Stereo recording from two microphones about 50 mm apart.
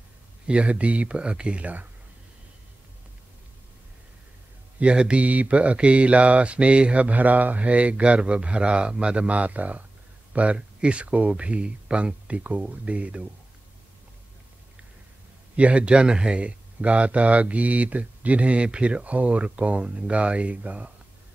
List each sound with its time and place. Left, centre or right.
0.5 s speech: right
4.7 s speech: right
15.5 s speech: right